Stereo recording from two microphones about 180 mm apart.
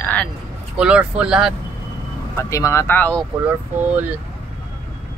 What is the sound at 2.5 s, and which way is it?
Speech, 15° left (ahead or behind).